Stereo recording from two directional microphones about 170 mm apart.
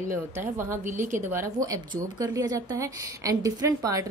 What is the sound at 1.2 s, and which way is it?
A woman's voice, 15° right (ahead or behind).